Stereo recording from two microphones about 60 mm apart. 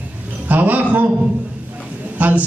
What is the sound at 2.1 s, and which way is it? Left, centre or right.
Speech, right.